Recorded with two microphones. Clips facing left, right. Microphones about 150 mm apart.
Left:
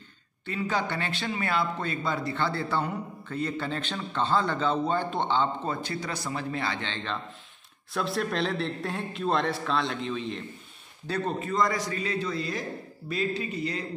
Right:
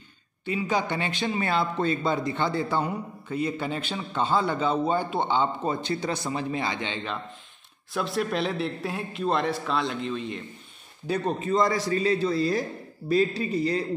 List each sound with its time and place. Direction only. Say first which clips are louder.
0.5 s a man's voice: right 3 dB; 15° right (ahead or behind)
5.8 s a man's voice: right 5 dB; 25° right (ahead or behind); by 10.4 s centre (ahead or behind)
11.1 s a man's voice: right 4 dB; 15° right (ahead or behind); by 13.8 s 35° right (ahead or behind)